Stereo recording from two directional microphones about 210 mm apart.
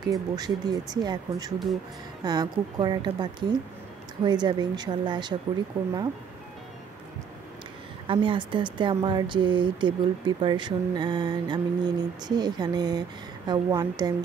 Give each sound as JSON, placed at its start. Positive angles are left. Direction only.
{"t": 0.0, "sound": "speech", "side_deg": -20}
{"t": 8.1, "sound": "speech", "side_deg": -25}